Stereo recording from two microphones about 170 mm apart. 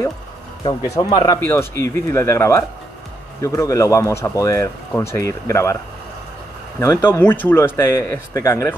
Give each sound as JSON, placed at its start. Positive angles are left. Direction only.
{"t": 0.8, "sound": "speech", "side_deg": 20}
{"t": 6.8, "sound": "speech", "side_deg": 15}